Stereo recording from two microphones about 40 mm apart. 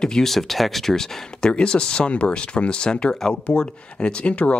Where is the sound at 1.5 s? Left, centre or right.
Left.